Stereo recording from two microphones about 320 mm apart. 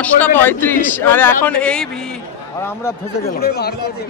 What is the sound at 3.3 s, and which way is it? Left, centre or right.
Speech, left.